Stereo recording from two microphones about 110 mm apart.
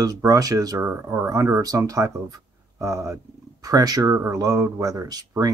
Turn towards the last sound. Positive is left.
turn(degrees=-35)  # may be behind; listen again after turning